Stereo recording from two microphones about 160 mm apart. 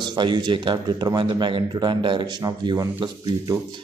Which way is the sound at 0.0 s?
25° right (ahead or behind).